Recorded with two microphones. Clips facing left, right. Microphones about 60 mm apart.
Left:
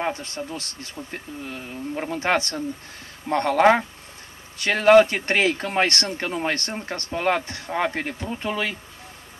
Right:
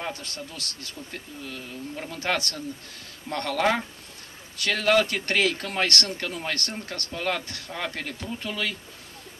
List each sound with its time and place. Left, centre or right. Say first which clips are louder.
0.0 s speech: left 7 dB; left